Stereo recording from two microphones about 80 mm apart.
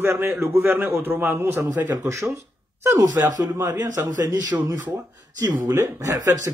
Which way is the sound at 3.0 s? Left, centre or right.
Right.